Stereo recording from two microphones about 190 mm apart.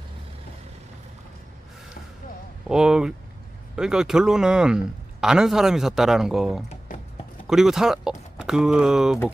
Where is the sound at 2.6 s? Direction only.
5° right (ahead or behind).